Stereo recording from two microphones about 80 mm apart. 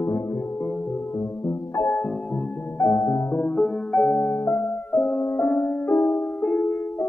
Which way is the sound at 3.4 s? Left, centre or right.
Centre.